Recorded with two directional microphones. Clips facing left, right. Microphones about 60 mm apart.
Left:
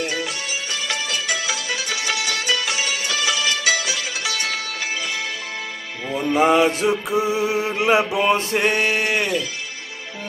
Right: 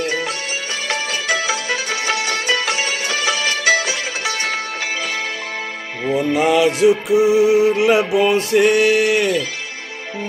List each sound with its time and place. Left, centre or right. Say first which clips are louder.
0.0 s music: right 4 dB; right
6.3 s music: left 1 dB; left
8.2 s a sound: right 4 dB; left